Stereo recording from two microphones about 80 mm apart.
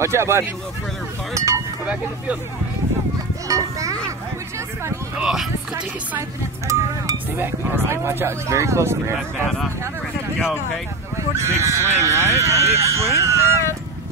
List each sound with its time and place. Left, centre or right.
0.0 s speech: right
3.4 s a child's voice: right
5.2 s speech: centre
6.7 s a child's voice: right
7.3 s speech: right
11.1 s speech: right